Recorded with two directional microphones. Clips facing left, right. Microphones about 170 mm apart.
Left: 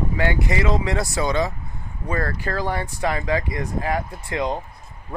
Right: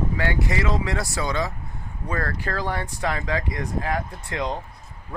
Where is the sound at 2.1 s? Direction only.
10° left (ahead or behind).